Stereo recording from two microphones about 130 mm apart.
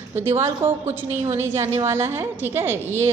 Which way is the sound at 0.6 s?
20° right (ahead or behind).